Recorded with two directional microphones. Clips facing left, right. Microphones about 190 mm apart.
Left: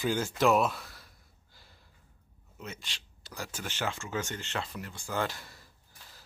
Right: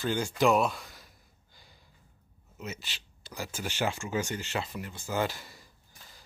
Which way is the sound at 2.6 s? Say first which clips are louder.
Right 3 dB; 5° right (ahead or behind).